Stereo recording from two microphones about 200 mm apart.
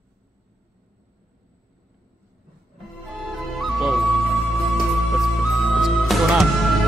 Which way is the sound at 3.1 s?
Centre (ahead or behind).